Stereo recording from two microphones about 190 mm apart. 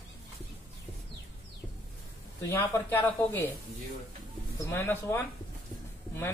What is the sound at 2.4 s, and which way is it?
Speech, 15° left (ahead or behind).